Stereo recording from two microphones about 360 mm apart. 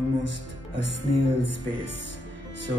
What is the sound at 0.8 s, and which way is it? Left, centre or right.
A man's voice, left.